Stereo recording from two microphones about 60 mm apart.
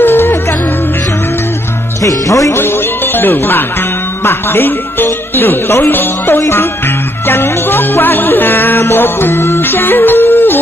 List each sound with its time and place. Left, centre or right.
0.0 s music: left
2.0 s speech: left
3.2 s speech: left
6.4 s music: left